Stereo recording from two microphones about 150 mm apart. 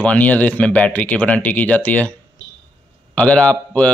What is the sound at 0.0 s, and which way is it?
Speech, 10° left (ahead or behind).